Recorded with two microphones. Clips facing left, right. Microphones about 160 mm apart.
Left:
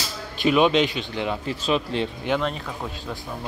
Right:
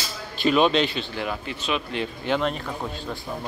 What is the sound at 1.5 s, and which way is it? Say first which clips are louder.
Speech: left 4 dB; 35° left (ahead or behind).